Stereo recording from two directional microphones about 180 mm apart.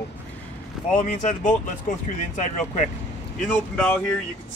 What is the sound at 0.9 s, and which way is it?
Speech, 45° left (ahead or behind).